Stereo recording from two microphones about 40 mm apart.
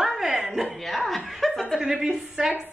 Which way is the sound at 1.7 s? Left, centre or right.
Centre.